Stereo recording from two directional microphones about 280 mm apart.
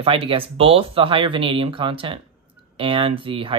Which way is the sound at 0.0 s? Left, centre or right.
Centre.